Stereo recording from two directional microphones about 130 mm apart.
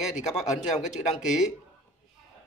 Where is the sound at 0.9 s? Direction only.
60° left (ahead or behind).